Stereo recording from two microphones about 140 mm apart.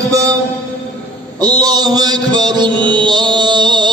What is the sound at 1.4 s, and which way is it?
Mantra, 30° right (ahead or behind).